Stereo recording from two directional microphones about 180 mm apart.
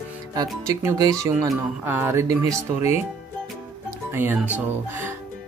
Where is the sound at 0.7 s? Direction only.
20° right (ahead or behind).